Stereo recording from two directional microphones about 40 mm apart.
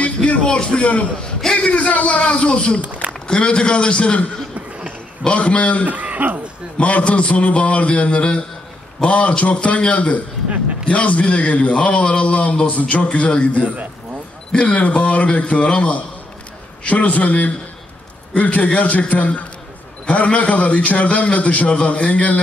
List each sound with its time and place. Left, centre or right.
0.0 s a man's voice: left
1.4 s a sound: centre
1.7 s a man's voice: left
2.8 s a sound: right
3.3 s a man's voice: left
5.9 s speech: right
6.8 s a man's voice: left